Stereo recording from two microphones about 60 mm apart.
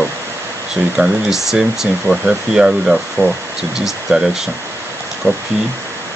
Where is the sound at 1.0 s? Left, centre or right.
Right.